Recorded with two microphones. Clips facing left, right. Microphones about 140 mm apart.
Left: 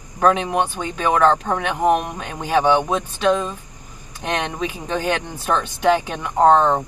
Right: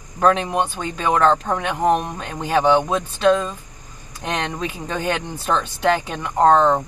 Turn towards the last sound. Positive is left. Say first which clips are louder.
# even
turn(degrees=15)  # may be behind; listen again after turning